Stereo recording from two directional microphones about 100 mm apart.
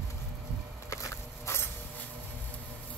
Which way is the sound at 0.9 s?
30° left (ahead or behind).